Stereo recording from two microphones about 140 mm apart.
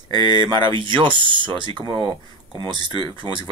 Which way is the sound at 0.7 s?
35° right (ahead or behind).